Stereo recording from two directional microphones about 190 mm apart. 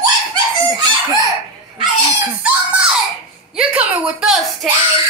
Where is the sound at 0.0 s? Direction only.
20° right (ahead or behind).